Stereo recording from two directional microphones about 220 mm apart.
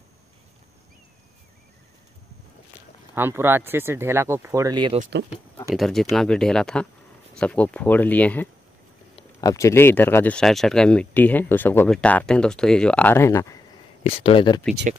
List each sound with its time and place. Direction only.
3.2 s speech: 10° right (ahead or behind)
5.8 s speech: centre (ahead or behind)
14.0 s speech: 25° left (ahead or behind)
14.9 s speech: 35° right (ahead or behind)